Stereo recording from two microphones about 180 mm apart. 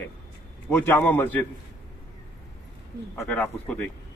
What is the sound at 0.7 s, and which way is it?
Speech, 10° left (ahead or behind).